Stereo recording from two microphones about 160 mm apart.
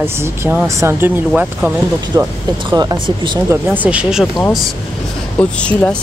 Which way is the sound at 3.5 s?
10° right (ahead or behind).